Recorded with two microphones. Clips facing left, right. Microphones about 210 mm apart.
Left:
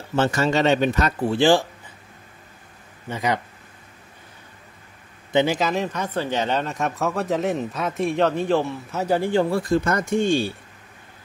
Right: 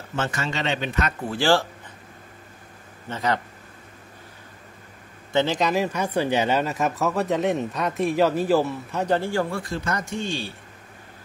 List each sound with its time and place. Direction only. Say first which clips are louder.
0.1 s speech: left 8 dB; 35° left (ahead or behind)
1.3 s speech: left 3 dB; 20° left (ahead or behind)
3.1 s speech: left 1 dB; 15° left (ahead or behind)
5.3 s a man's voice: left 2 dB; 15° left (ahead or behind)
5.6 s speech: right 1 dB; centre (ahead or behind)
9.5 s speech: left 7 dB; 45° left (ahead or behind)